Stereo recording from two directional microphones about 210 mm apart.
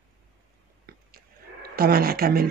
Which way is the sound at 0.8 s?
45° right (ahead or behind).